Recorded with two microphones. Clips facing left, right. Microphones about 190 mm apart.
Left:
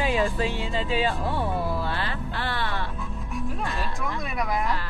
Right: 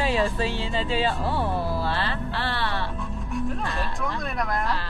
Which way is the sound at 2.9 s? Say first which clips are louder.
Right 3 dB; centre (ahead or behind).